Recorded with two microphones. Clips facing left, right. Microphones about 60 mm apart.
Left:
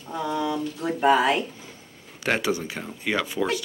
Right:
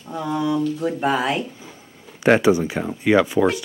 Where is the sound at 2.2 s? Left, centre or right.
Right.